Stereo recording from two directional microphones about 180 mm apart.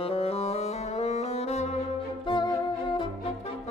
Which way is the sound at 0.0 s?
35° left (ahead or behind).